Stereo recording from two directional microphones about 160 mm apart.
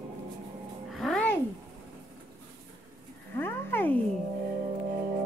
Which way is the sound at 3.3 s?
15° left (ahead or behind).